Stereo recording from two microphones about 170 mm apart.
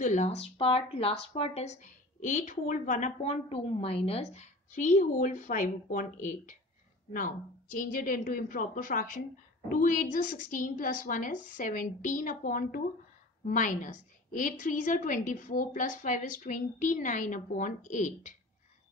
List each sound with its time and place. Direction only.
0.0 s a woman's voice: 45° left (ahead or behind)